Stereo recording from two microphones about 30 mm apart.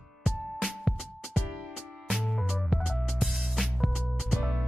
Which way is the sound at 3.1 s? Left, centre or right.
Centre.